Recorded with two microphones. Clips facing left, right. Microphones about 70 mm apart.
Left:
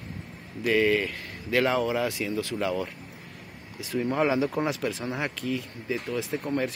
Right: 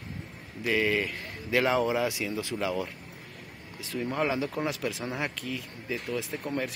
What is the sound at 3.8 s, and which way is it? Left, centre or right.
Speech, centre.